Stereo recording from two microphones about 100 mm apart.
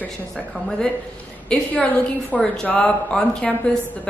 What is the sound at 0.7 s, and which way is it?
A woman's voice, 5° left (ahead or behind).